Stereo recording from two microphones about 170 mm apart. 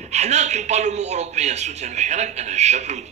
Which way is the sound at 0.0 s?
40° right (ahead or behind).